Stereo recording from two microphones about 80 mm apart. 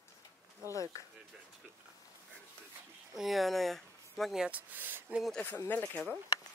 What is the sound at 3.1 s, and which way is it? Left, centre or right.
Speech, centre.